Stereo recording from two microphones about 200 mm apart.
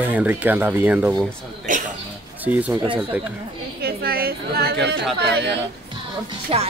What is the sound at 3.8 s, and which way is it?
A woman's voice, 50° right (ahead or behind).